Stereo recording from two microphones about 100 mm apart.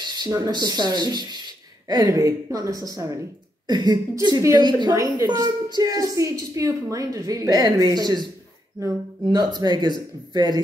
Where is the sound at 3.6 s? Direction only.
45° right (ahead or behind).